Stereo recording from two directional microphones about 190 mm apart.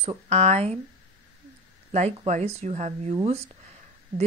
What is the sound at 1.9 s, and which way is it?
Speech, 35° right (ahead or behind).